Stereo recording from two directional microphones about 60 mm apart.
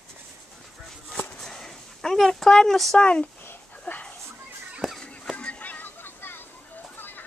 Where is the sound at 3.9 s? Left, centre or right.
Left.